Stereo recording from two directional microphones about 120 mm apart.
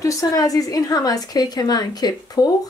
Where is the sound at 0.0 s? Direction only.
30° left (ahead or behind).